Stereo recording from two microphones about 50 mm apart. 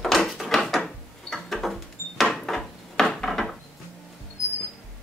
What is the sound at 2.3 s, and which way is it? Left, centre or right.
Wood, centre.